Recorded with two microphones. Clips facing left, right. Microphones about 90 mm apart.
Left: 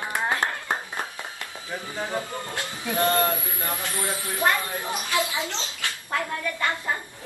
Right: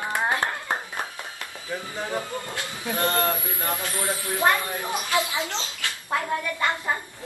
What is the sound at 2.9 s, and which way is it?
Speech, 20° left (ahead or behind).